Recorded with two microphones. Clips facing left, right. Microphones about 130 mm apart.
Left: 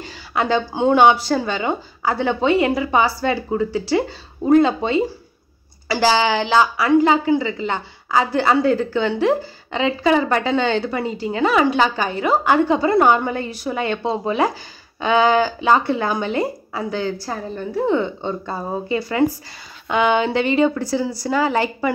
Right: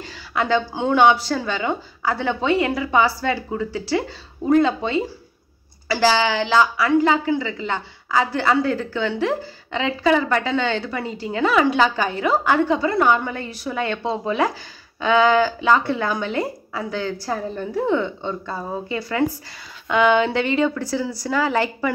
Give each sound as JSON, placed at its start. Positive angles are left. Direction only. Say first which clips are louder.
{"t": 0.0, "sound": "a sound", "louder": "left 2 dB", "side_deg": 10}
{"t": 1.4, "sound": "a woman's voice", "louder": "left 2 dB", "side_deg": 15}
{"t": 11.1, "sound": "a woman's voice", "louder": "right 1 dB", "side_deg": 10}
{"t": 12.6, "sound": "speech", "louder": "left 3 dB", "side_deg": 30}
{"t": 13.7, "sound": "a woman's voice", "louder": "left 1 dB", "side_deg": 15}
{"t": 17.3, "sound": "a woman's voice", "louder": "right 1 dB", "side_deg": 0}
{"t": 17.9, "sound": "a woman's voice", "louder": "left 2 dB", "side_deg": 20}
{"t": 19.9, "sound": "a woman's voice", "louder": "even", "side_deg": 5}
{"t": 20.7, "sound": "speech", "louder": "left 3 dB", "side_deg": 25}
{"t": 21.0, "sound": "a woman's voice", "louder": "left 2 dB", "side_deg": 0}